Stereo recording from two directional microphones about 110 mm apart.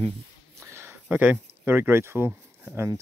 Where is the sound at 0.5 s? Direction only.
25° right (ahead or behind).